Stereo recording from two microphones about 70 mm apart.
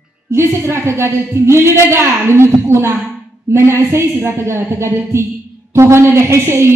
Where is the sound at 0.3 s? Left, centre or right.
Right.